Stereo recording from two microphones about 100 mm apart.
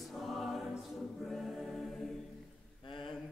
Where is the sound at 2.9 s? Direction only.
55° left (ahead or behind).